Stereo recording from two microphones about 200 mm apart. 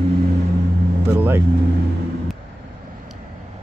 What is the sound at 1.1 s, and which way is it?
Speech, 10° right (ahead or behind).